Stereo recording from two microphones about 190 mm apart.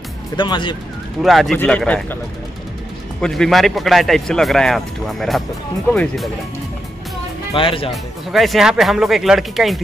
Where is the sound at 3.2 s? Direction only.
Centre (ahead or behind).